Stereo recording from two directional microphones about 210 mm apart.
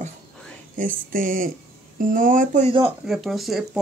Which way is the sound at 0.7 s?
40° right (ahead or behind).